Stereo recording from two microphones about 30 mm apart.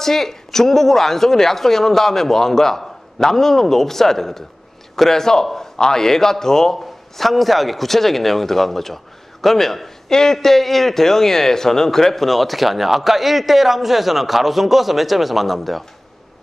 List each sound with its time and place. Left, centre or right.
0.0 s a woman's voice: centre
7.2 s a man's voice: centre